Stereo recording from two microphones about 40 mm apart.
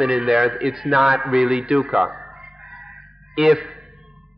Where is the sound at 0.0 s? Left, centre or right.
Centre.